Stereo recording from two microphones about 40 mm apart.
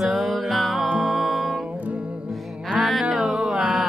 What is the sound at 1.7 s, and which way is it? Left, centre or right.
Music, right.